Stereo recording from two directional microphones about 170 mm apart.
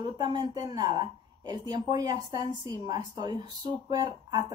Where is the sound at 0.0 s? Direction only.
25° right (ahead or behind).